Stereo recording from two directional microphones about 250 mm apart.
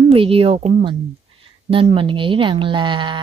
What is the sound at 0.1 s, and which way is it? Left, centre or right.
Speech, right.